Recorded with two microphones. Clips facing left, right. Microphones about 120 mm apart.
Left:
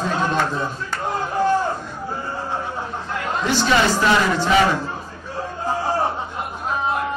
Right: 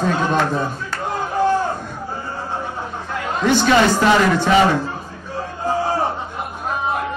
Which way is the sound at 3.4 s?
55° right (ahead or behind).